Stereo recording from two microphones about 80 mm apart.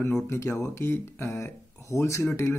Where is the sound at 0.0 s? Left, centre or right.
Left.